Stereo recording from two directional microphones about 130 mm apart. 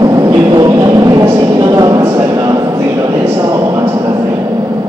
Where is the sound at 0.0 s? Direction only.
30° right (ahead or behind).